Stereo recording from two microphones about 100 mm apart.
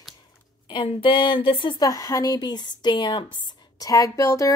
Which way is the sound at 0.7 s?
60° left (ahead or behind).